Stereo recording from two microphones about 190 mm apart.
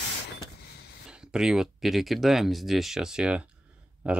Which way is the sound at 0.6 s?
55° left (ahead or behind).